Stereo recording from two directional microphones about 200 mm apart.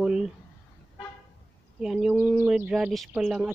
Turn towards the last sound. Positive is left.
turn(degrees=-5)  # may be behind; listen again after turning